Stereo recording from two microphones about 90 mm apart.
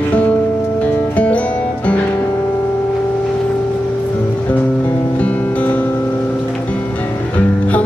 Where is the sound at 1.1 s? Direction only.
15° left (ahead or behind).